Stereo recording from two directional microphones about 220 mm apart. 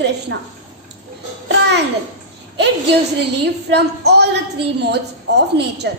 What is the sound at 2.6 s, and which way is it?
A woman's voice, 50° right (ahead or behind).